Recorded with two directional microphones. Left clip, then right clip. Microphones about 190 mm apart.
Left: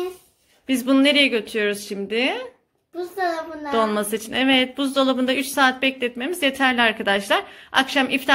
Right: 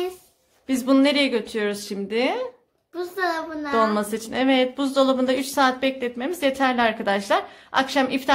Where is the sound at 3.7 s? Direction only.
Centre (ahead or behind).